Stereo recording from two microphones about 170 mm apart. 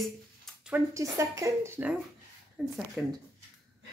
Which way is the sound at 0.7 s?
15° right (ahead or behind).